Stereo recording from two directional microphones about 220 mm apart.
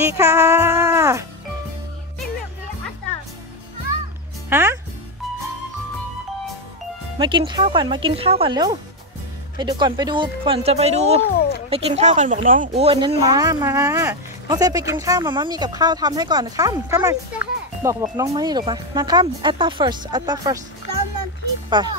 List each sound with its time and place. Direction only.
0.0 s music: 10° right (ahead or behind)
4.5 s speech: 10° right (ahead or behind)
7.2 s speech: 20° right (ahead or behind)
11.3 s a sound: 45° left (ahead or behind)
11.7 s speech: 30° right (ahead or behind)
21.6 s speech: 20° right (ahead or behind)